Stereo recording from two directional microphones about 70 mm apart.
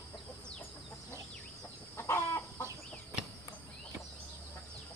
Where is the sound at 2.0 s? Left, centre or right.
Left.